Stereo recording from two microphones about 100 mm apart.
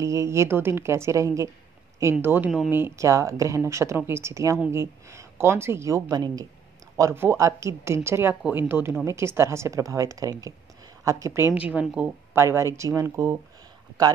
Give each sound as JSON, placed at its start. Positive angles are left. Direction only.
{"t": 0.0, "sound": "speech", "side_deg": -30}
{"t": 2.2, "sound": "speech", "side_deg": -20}
{"t": 7.0, "sound": "a woman's voice", "side_deg": -25}
{"t": 11.5, "sound": "speech", "side_deg": -10}
{"t": 12.4, "sound": "speech", "side_deg": -25}